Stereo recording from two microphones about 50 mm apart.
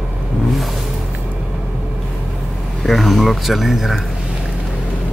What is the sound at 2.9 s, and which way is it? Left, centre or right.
Speech, centre.